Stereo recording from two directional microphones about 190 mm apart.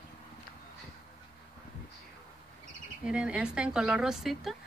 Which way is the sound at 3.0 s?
5° right (ahead or behind).